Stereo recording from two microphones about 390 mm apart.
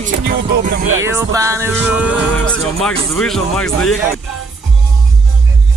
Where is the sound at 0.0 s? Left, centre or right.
Right.